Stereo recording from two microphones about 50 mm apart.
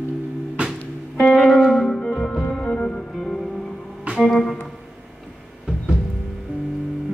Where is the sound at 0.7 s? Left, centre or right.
Centre.